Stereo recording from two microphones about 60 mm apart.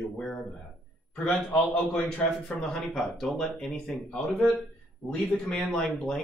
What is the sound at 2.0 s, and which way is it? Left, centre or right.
Speech, centre.